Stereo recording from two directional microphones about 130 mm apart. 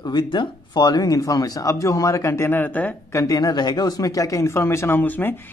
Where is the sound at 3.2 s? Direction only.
30° left (ahead or behind).